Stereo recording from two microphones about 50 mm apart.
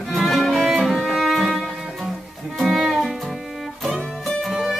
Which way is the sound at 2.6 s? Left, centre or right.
Centre.